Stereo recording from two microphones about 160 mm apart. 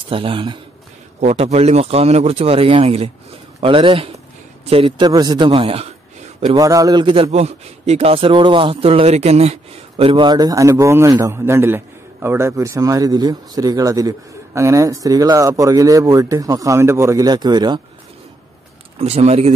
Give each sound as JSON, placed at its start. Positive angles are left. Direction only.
{"t": 0.1, "sound": "a man's voice", "side_deg": -35}
{"t": 6.4, "sound": "speech", "side_deg": -25}
{"t": 7.2, "sound": "speech", "side_deg": -40}
{"t": 18.9, "sound": "a man's voice", "side_deg": -40}